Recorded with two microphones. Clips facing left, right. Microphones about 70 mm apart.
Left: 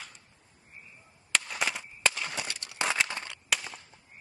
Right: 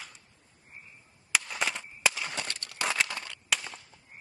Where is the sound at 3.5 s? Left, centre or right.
Centre.